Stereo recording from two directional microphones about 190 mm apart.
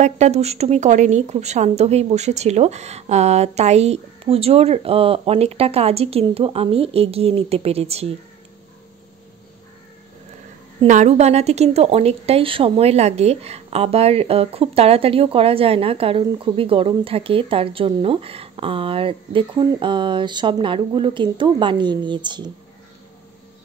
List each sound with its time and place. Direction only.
0.0 s a woman's voice: 35° right (ahead or behind)
10.9 s a woman's voice: 40° right (ahead or behind); by 22.5 s 25° right (ahead or behind)